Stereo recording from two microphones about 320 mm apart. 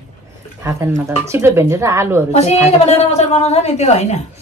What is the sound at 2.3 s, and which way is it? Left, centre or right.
Speech, centre.